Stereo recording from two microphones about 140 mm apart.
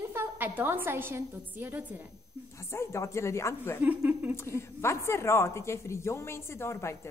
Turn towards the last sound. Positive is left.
turn(degrees=20)  # may be behind; listen again after turning